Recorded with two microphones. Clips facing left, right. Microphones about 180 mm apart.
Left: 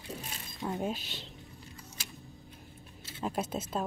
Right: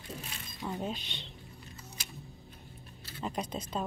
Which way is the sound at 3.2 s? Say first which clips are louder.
Left 2 dB; 5° left (ahead or behind).